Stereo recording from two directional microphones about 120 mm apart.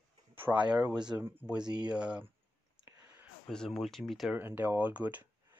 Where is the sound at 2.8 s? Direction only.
20° right (ahead or behind).